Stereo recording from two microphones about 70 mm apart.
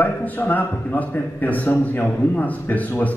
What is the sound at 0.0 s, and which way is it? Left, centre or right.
A man's voice, left.